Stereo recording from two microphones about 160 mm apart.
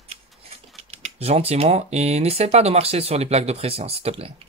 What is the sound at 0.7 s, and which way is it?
Speech, 40° right (ahead or behind).